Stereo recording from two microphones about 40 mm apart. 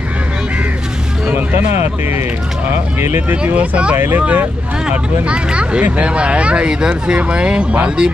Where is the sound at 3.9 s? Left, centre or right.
Right.